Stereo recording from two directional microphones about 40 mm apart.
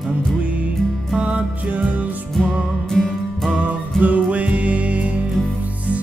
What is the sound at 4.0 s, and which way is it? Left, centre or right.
Music, right.